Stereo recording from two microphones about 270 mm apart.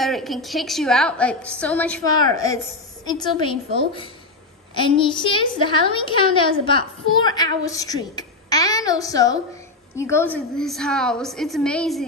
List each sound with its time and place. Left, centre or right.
0.0 s a woman's voice: centre